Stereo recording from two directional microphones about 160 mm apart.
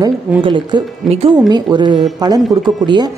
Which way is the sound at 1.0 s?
Centre (ahead or behind).